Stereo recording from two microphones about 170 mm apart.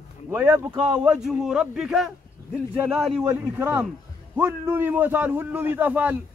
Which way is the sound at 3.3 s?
15° right (ahead or behind).